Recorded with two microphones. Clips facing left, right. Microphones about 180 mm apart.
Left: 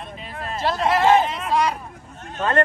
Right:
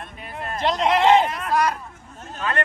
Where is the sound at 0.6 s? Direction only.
20° right (ahead or behind).